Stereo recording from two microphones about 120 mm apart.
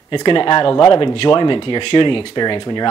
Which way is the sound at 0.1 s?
40° left (ahead or behind).